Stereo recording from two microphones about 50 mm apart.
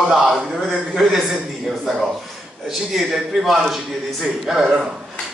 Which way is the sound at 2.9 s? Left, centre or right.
Centre.